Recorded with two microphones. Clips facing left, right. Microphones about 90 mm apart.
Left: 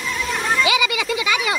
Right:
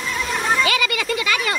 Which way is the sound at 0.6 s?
10° left (ahead or behind).